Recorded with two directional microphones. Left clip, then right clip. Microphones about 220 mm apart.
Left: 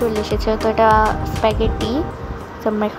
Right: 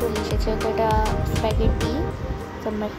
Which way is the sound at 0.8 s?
10° left (ahead or behind).